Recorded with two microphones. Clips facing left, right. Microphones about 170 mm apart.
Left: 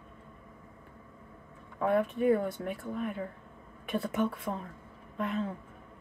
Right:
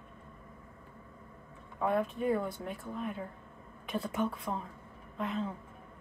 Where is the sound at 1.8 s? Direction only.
60° left (ahead or behind).